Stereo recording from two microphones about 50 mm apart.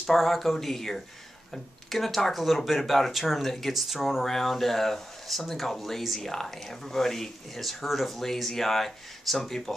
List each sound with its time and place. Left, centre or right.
0.0 s speech: centre